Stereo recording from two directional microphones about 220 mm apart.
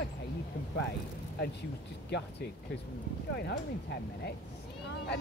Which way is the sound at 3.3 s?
45° left (ahead or behind).